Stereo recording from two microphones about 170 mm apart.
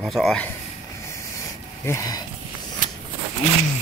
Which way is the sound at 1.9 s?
20° left (ahead or behind).